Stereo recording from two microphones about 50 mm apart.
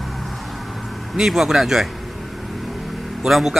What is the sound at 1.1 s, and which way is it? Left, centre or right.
Speech, centre.